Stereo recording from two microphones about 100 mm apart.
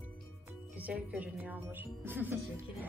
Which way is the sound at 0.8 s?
15° right (ahead or behind).